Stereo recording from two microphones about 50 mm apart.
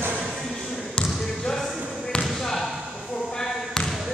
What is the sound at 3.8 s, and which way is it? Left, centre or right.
Basketball bounce, centre.